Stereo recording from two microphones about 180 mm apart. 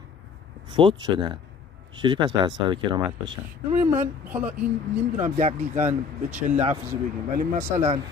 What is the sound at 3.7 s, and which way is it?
Speech, 40° right (ahead or behind).